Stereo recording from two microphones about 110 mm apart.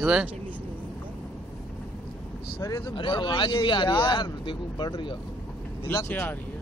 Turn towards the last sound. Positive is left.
turn(degrees=20)  # may be behind; listen again after turning